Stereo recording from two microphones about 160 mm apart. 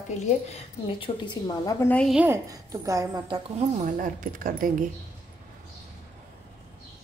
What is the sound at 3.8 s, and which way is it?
Speech, 55° right (ahead or behind).